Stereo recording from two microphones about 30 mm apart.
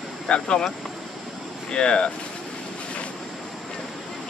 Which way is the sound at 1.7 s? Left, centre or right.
Left.